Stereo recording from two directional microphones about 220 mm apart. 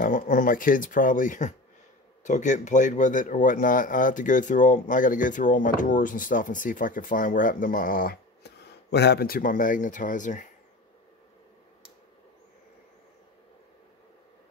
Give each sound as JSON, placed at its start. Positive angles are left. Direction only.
{"t": 0.0, "sound": "a man's voice", "side_deg": 40}